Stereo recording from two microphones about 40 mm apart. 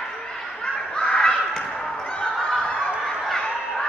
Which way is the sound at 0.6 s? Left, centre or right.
Left.